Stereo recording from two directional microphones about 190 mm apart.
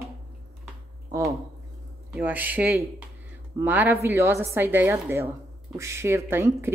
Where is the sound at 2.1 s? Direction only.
10° right (ahead or behind).